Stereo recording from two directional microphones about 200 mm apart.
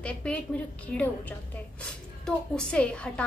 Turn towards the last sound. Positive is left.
turn(degrees=5)  # may be behind; listen again after turning